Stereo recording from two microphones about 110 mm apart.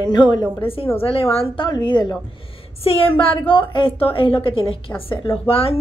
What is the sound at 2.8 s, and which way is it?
A woman's voice, 55° left (ahead or behind).